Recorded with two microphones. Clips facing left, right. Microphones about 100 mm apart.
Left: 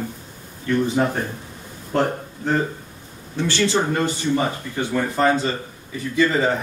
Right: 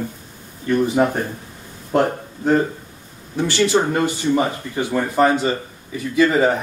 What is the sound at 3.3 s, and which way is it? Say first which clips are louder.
A man's voice: right 3 dB; 15° right (ahead or behind).